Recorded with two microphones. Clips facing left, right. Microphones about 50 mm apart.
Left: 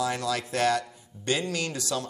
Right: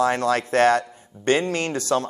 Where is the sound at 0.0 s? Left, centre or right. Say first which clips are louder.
Right 8 dB; right.